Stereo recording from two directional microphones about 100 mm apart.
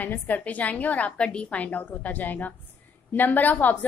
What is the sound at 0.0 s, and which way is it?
A woman's voice, 15° left (ahead or behind).